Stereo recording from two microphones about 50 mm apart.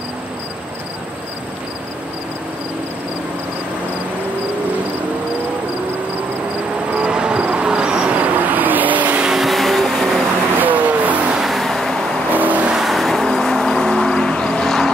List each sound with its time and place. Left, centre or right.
7.0 s vehicle: centre
9.2 s vehicle: centre
10.6 s vehicle: right
11.3 s vehicle: centre
12.4 s vehicle: right
12.7 s vehicle: centre